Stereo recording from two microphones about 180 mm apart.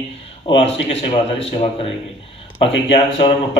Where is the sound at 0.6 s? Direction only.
35° left (ahead or behind).